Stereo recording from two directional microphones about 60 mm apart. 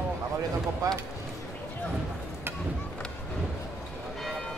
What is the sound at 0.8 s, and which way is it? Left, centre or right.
Speech, right.